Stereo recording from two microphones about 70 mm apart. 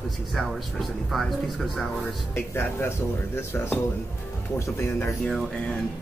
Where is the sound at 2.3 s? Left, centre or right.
Left.